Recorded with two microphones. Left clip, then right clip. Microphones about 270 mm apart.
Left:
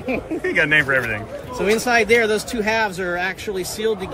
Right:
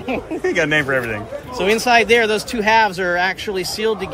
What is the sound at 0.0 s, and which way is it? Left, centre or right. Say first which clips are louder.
Speech: right 2 dB; centre.